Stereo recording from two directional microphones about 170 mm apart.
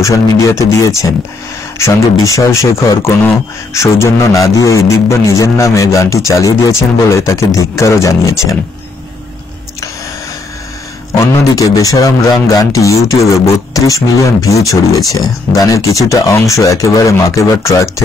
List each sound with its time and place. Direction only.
0.0 s a man's voice: 20° left (ahead or behind)
11.1 s a man's voice: 20° left (ahead or behind)